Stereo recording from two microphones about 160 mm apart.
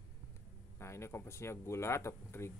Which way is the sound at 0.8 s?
15° left (ahead or behind).